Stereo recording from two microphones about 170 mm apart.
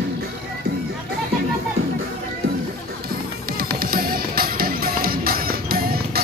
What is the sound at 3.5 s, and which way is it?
Music, 60° right (ahead or behind).